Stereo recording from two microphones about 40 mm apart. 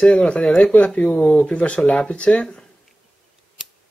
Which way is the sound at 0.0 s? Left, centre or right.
Left.